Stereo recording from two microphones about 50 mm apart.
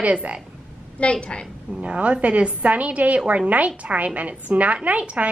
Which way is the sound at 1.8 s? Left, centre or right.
Right.